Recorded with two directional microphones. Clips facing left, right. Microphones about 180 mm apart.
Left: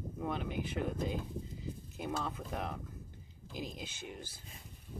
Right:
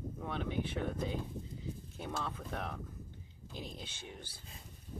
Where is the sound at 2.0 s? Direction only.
5° left (ahead or behind).